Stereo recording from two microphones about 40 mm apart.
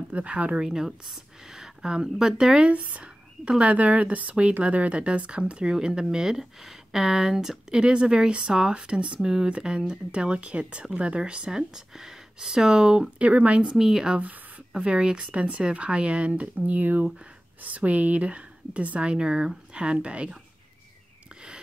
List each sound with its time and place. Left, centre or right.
0.1 s speech: right
0.6 s a woman's voice: centre
2.6 s speech: right; by 13.0 s centre
13.2 s speech: right
13.7 s a woman's voice: centre
14.9 s speech: right